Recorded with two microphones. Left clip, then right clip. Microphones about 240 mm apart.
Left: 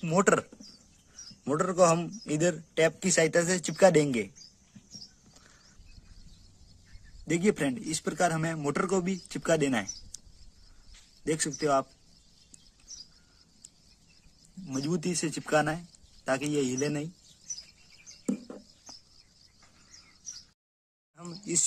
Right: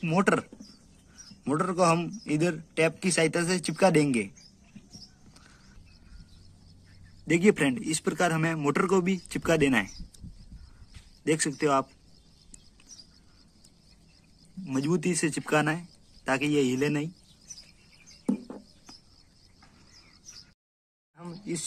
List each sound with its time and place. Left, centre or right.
0.0 s a man's voice: left
7.2 s speech: centre
11.2 s speech: centre
14.7 s speech: centre
21.2 s a sound: left